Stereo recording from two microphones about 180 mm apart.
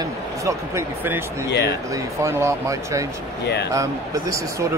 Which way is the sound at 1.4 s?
70° left (ahead or behind).